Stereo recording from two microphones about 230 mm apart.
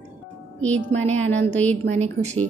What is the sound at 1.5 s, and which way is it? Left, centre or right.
Speech, centre.